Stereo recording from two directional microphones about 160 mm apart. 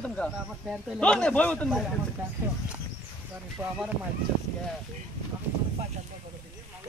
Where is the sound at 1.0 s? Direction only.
5° left (ahead or behind).